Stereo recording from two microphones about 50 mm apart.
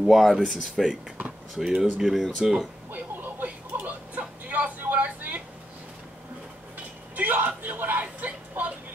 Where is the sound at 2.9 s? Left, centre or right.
Right.